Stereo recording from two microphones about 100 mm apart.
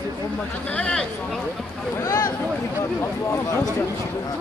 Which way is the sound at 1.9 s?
35° left (ahead or behind).